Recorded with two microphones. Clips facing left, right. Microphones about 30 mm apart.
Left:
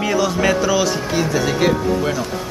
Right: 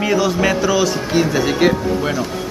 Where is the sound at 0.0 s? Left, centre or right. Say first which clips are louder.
Right 1 dB; centre.